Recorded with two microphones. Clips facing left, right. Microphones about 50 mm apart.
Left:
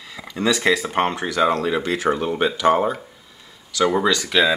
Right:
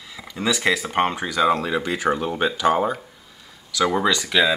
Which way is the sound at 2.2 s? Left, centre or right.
Centre.